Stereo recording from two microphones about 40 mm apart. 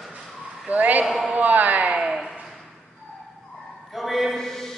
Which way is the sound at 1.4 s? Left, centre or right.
Right.